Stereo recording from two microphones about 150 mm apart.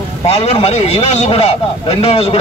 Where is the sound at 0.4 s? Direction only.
45° left (ahead or behind).